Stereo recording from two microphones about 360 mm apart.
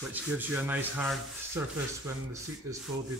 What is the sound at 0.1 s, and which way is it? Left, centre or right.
Rub, centre.